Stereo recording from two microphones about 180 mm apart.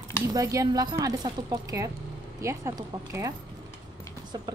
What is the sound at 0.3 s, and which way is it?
Speech, 20° right (ahead or behind).